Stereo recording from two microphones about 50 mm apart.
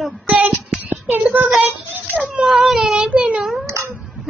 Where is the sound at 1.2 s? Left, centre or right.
Right.